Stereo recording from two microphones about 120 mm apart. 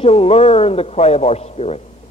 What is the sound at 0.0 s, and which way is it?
A man's voice, 55° left (ahead or behind).